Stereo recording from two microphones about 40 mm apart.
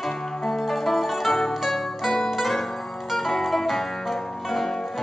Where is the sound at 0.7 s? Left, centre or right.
Centre.